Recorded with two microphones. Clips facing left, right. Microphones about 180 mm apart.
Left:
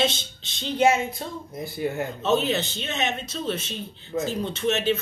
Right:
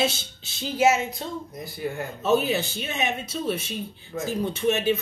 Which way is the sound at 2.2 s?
10° right (ahead or behind).